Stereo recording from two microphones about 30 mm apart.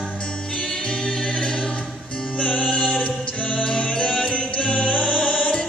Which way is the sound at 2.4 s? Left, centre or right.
Left.